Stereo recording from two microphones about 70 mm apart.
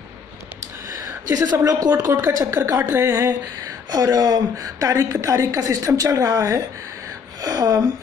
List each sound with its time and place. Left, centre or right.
1.3 s a woman's voice: right
2.0 s a woman's voice: right
3.3 s a woman's voice: right